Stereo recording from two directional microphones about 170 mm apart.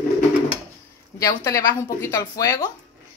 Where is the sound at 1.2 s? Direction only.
20° left (ahead or behind).